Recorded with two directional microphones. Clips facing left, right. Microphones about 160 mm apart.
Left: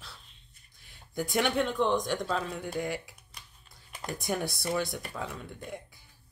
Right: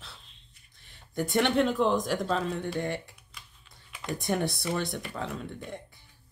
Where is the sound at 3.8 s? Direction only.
45° left (ahead or behind).